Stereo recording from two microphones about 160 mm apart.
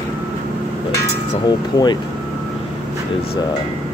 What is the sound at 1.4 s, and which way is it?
Speech, 25° left (ahead or behind).